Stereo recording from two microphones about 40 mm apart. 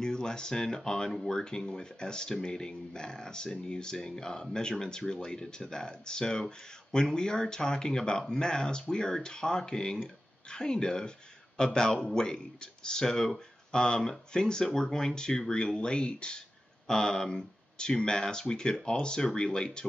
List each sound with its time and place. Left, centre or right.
0.0 s speech: centre